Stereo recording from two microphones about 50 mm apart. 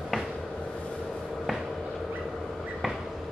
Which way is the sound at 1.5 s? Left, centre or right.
Centre.